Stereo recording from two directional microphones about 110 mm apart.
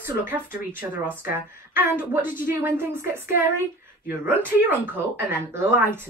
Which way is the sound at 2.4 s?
20° right (ahead or behind).